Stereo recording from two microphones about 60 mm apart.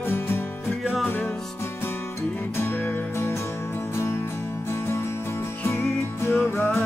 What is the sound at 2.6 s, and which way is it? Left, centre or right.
Music, left.